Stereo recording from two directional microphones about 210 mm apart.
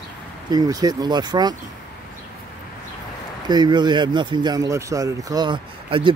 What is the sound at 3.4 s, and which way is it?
Speech, 20° right (ahead or behind).